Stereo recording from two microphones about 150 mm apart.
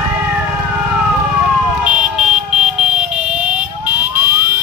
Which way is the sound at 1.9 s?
5° right (ahead or behind).